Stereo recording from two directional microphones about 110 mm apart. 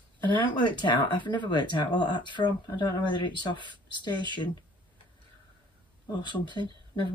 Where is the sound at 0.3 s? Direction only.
45° left (ahead or behind).